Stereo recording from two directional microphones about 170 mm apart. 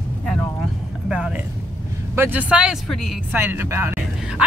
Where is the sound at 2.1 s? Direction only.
10° right (ahead or behind).